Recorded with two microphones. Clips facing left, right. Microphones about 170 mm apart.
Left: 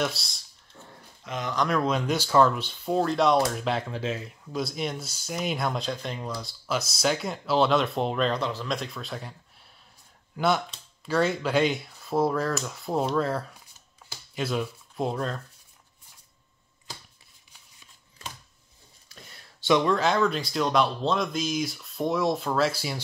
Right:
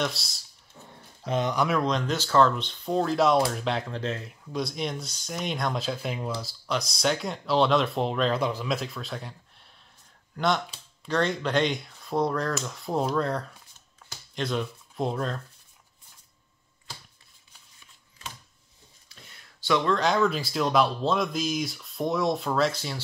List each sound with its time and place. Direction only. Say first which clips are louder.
0.0 s speech: left 1 dB; centre (ahead or behind)
1.2 s speech: right 6 dB; 30° right (ahead or behind)
1.5 s speech: left 3 dB; 10° right (ahead or behind)
1.8 s speech: left 1 dB; 5° left (ahead or behind)
8.4 s speech: right 2 dB; 10° right (ahead or behind)
10.3 s speech: left 1 dB; 5° left (ahead or behind)
19.6 s speech: left 2 dB; 15° left (ahead or behind)
20.0 s speech: even; centre (ahead or behind)